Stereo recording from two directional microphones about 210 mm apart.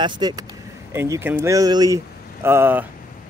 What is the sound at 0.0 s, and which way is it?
Speech, 20° right (ahead or behind).